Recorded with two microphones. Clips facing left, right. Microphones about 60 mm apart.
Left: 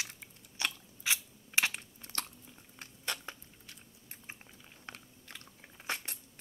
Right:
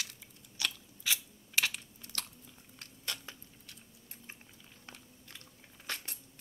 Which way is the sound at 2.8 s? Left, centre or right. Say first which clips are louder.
Left 3 dB; left.